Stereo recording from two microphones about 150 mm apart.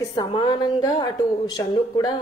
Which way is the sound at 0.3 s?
30° left (ahead or behind).